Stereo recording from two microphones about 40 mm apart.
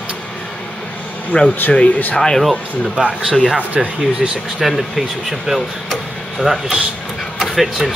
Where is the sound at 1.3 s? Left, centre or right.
Left.